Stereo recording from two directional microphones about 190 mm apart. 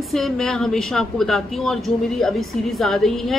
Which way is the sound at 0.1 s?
Centre (ahead or behind).